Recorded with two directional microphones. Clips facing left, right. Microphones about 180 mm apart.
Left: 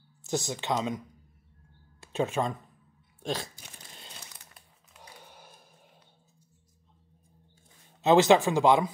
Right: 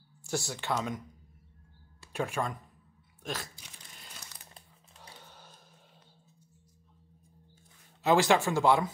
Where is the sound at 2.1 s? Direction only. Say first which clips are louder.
Left 4 dB; 20° left (ahead or behind).